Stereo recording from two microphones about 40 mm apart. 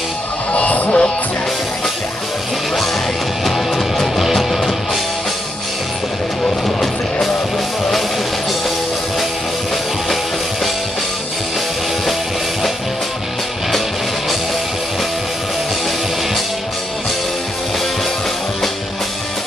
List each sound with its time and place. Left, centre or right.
0.5 s music: left
3.4 s music: centre
6.6 s music: centre